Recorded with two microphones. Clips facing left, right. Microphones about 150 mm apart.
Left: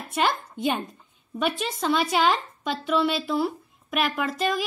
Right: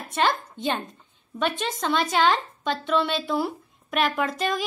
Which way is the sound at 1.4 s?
5° left (ahead or behind).